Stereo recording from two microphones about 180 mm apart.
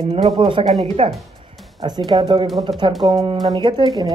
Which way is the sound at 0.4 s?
30° right (ahead or behind).